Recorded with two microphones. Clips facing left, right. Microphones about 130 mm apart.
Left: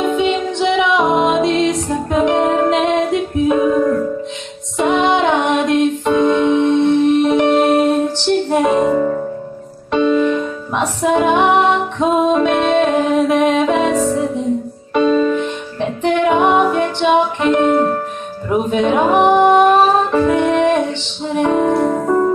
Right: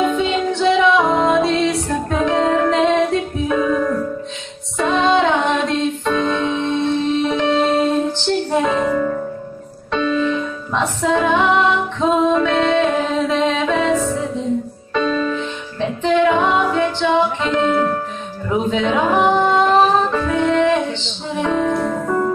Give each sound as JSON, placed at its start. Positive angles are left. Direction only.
{"t": 0.0, "sound": "music", "side_deg": 20}
{"t": 9.9, "sound": "music", "side_deg": 20}
{"t": 15.3, "sound": "music", "side_deg": 60}
{"t": 16.3, "sound": "music", "side_deg": 15}
{"t": 18.5, "sound": "speech", "side_deg": 20}
{"t": 18.9, "sound": "music", "side_deg": 20}